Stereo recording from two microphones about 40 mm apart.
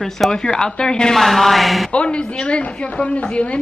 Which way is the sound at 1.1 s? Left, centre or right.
Centre.